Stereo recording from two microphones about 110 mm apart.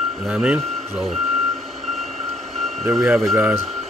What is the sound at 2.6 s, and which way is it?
Speech, centre (ahead or behind).